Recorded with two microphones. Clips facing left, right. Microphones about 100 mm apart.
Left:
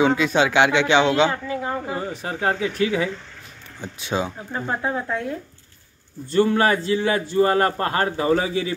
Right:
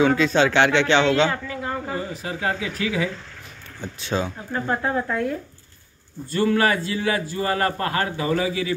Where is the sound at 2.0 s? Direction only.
35° left (ahead or behind).